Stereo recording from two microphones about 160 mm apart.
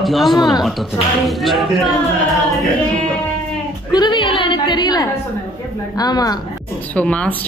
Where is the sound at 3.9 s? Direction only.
30° left (ahead or behind).